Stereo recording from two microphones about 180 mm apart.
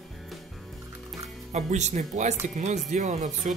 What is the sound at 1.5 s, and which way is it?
Speech, 40° right (ahead or behind).